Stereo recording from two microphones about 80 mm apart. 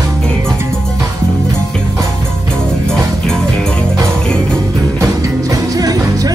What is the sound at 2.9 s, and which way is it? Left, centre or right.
Music, centre.